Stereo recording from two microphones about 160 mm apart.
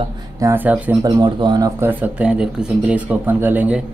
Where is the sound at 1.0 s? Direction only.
25° right (ahead or behind).